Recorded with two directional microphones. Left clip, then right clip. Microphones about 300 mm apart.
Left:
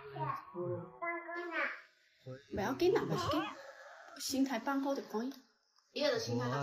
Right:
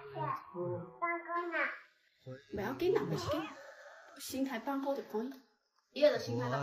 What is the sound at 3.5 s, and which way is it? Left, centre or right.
Wail, centre.